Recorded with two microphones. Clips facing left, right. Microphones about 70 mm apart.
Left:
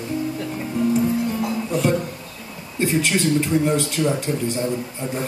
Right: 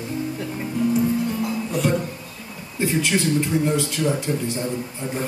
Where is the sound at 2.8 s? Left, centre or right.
Left.